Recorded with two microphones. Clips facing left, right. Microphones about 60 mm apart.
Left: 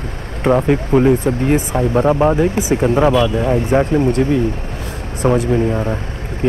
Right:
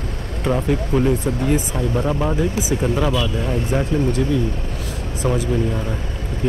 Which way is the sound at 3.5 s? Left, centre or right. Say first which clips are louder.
Left 5 dB; left.